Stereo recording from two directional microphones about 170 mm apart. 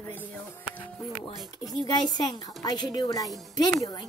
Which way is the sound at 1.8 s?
25° left (ahead or behind).